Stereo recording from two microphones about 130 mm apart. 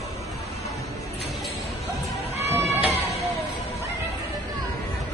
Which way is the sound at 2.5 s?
20° right (ahead or behind).